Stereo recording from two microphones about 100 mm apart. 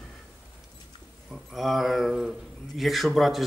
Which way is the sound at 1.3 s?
Centre (ahead or behind).